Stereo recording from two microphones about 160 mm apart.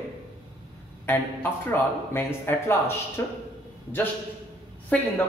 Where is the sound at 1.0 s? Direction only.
15° left (ahead or behind).